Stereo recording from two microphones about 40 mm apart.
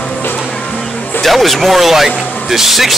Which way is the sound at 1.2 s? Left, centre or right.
Centre.